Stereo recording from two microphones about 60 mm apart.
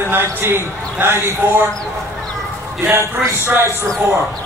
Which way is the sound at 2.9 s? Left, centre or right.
Right.